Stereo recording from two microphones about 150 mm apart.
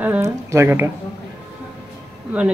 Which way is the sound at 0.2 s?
20° right (ahead or behind).